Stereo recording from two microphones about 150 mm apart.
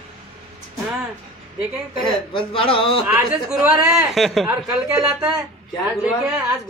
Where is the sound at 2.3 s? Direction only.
35° left (ahead or behind).